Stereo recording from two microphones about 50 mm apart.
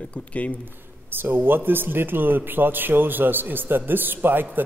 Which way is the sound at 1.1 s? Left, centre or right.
Right.